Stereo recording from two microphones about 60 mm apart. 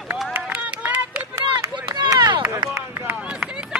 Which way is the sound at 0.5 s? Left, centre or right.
Right.